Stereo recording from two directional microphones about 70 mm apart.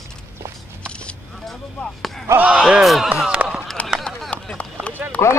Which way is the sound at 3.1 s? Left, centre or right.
Centre.